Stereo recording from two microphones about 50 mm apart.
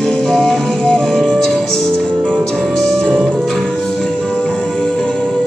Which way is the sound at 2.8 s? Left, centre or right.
Centre.